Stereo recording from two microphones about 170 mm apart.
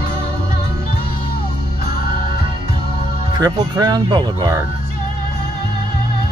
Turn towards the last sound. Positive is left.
turn(degrees=-25)  # may be behind; listen again after turning